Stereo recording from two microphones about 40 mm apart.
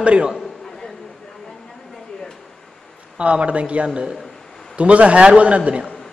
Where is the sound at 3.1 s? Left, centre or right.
Right.